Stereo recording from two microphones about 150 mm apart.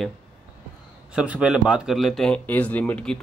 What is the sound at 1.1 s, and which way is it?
Speech, 5° right (ahead or behind).